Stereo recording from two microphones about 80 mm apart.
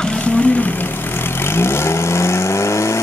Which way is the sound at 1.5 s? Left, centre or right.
Left.